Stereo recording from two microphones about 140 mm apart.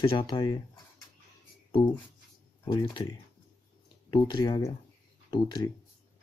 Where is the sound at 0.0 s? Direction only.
40° left (ahead or behind).